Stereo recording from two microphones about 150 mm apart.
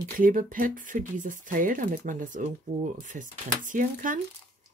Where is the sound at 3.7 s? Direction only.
65° right (ahead or behind).